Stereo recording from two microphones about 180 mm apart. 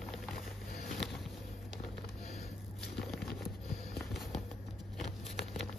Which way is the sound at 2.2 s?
35° left (ahead or behind).